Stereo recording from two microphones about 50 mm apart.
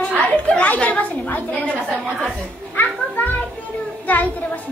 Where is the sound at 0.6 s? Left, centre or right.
Left.